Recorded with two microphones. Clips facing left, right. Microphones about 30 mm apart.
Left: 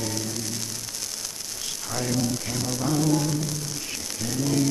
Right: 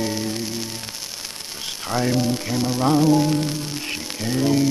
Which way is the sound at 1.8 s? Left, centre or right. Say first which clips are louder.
Right 6 dB; right.